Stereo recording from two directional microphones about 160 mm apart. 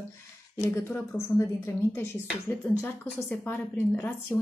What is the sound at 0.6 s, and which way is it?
Speech, 15° left (ahead or behind).